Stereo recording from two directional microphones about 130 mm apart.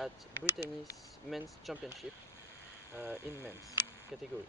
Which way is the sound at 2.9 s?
20° right (ahead or behind).